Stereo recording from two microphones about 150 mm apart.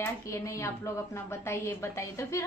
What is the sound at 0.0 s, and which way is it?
A woman's voice, 20° left (ahead or behind).